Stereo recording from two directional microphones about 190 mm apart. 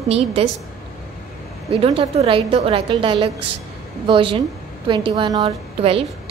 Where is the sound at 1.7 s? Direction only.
30° right (ahead or behind).